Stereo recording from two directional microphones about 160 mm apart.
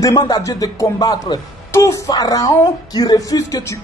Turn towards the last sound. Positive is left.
turn(degrees=20)  # may be behind; listen again after turning